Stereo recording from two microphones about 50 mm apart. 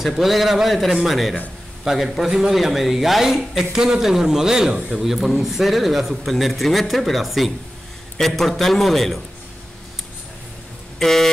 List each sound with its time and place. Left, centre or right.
0.0 s a man's voice: centre
11.0 s speech: centre